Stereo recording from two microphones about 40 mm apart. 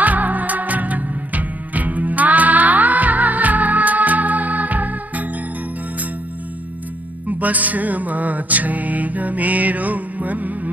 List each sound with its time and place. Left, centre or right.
0.0 s music: right
7.2 s music: right